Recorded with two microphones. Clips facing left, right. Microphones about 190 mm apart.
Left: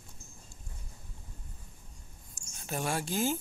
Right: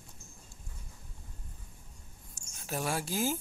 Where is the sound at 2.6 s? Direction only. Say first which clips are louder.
Even; centre (ahead or behind).